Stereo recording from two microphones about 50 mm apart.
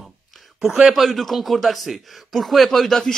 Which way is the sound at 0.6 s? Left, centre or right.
Centre.